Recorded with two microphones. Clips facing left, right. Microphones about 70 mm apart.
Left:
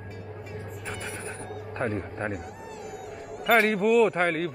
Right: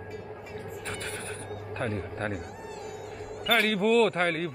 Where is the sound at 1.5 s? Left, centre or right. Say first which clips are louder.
Left 1 dB; centre.